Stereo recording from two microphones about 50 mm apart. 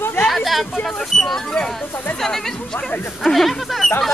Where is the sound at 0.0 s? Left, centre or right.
Left.